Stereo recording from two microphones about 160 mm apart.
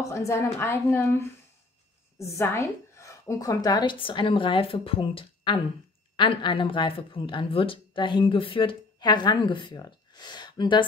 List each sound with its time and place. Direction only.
0.0 s a woman's voice: 20° left (ahead or behind)